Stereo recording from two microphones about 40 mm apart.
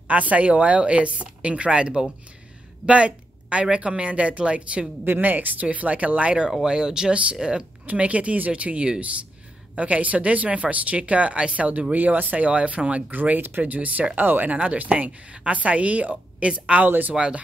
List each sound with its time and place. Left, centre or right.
0.1 s a woman's voice: right
2.9 s quack: right
3.7 s a woman's voice: right
5.0 s a woman's voice: right
6.6 s speech: centre
7.8 s a woman's voice: right
13.1 s speech: right
13.7 s a woman's voice: right
14.2 s speech: right
14.5 s a woman's voice: right
16.8 s speech: right